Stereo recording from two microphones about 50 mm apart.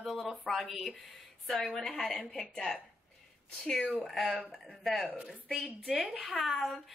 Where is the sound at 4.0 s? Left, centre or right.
Centre.